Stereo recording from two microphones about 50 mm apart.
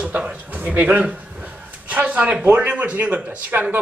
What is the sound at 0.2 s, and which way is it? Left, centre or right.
Speech, right.